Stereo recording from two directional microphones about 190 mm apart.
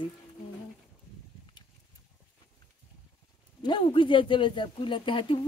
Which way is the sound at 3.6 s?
25° left (ahead or behind).